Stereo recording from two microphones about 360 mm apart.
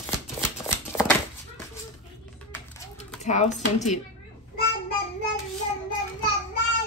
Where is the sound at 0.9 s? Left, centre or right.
Centre.